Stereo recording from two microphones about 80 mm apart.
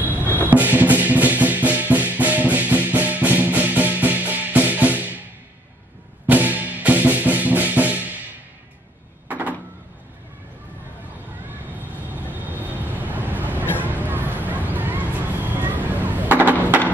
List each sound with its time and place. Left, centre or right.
0.0 s music: right
6.2 s music: right
9.3 s door: centre
11.7 s vehicle: right
13.8 s a sound: right